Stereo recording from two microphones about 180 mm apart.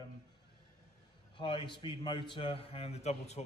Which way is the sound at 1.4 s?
25° left (ahead or behind).